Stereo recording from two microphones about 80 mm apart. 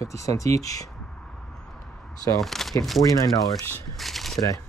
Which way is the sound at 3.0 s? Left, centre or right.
Left.